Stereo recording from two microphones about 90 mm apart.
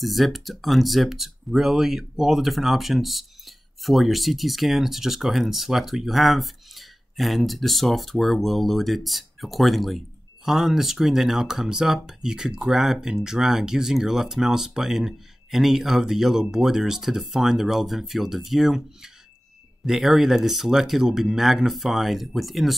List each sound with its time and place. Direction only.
0.0 s speech: centre (ahead or behind)